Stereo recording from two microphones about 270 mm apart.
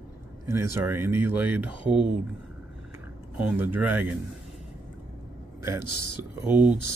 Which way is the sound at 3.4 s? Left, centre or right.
Centre.